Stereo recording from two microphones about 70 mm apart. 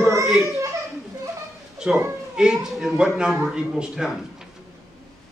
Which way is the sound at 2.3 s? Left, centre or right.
Centre.